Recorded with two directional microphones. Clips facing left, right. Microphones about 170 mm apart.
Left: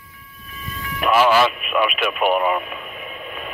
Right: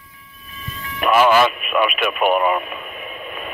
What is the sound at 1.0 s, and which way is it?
Speech, 50° right (ahead or behind).